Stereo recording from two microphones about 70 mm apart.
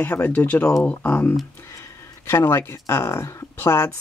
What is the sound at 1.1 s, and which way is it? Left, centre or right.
Speech, left.